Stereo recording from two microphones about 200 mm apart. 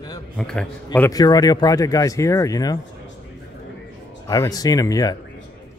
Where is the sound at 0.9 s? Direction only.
15° left (ahead or behind).